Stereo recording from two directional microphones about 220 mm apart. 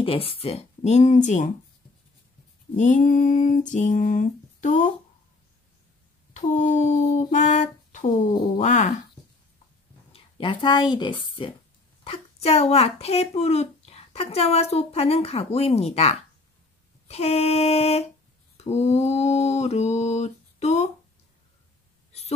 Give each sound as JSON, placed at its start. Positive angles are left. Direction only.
{"t": 0.0, "sound": "speech", "side_deg": 25}
{"t": 2.7, "sound": "mantra", "side_deg": 35}
{"t": 6.3, "sound": "mantra", "side_deg": 35}
{"t": 10.1, "sound": "speech", "side_deg": 25}
{"t": 18.6, "sound": "mantra", "side_deg": 30}